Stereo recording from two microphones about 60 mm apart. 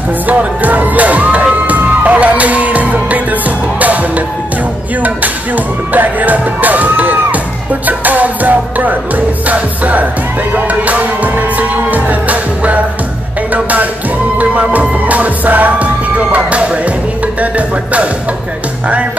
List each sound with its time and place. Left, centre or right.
0.3 s music: right
5.9 s speech: right
7.8 s music: right